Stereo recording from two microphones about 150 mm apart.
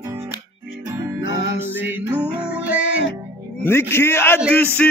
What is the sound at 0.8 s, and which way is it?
Music, 20° right (ahead or behind).